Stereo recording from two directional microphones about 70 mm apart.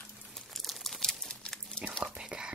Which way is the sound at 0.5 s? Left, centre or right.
Centre.